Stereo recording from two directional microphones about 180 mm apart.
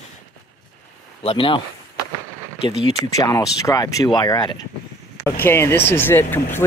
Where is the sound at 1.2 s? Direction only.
30° left (ahead or behind).